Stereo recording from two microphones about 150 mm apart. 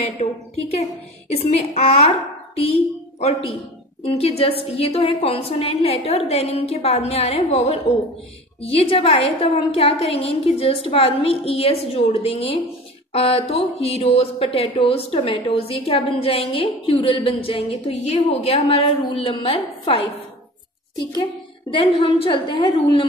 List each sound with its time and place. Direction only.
0.2 s a woman's voice: 50° left (ahead or behind); by 23.0 s 30° left (ahead or behind)